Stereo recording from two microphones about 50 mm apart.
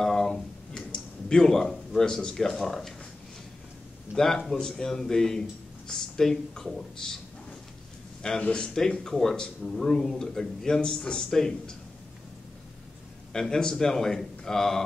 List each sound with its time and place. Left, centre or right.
0.0 s music: centre
2.0 s speech: centre
4.1 s speech: centre
8.4 s speech: left
9.0 s speech: centre
13.3 s speech: centre